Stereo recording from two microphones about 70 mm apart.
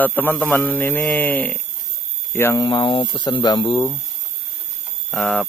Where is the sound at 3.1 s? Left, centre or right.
Left.